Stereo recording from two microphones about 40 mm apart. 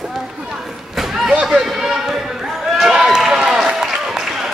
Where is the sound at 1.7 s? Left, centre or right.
Centre.